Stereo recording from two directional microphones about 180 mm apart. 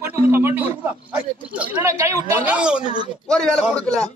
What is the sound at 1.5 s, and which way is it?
A man's voice, 10° right (ahead or behind).